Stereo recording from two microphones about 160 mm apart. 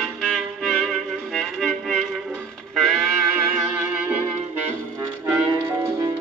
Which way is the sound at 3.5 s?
10° right (ahead or behind).